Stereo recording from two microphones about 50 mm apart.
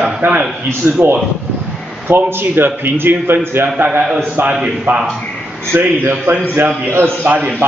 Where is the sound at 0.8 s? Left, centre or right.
Right.